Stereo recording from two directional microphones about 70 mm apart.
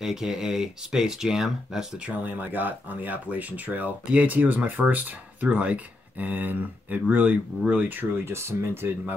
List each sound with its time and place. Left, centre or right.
0.0 s speech: centre
2.0 s speech: right
8.3 s speech: right